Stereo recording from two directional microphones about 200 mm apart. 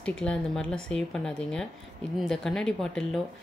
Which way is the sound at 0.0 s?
5° left (ahead or behind).